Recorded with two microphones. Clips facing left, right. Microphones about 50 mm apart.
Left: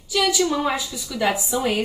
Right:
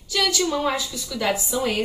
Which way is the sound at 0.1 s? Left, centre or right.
Centre.